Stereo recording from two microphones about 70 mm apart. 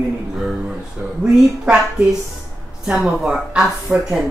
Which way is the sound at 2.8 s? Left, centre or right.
Centre.